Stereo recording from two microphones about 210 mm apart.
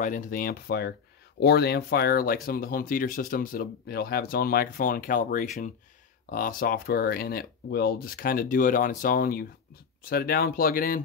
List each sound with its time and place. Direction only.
0.0 s speech: 40° left (ahead or behind)